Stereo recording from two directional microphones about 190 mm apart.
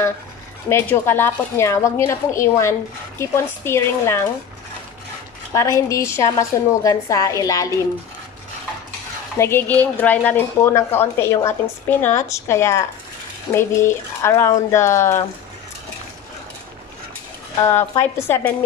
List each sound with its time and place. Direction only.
0.7 s a woman's voice: 15° left (ahead or behind)
5.5 s a woman's voice: 15° left (ahead or behind)
9.4 s a woman's voice: 10° left (ahead or behind)
17.6 s a woman's voice: 15° left (ahead or behind)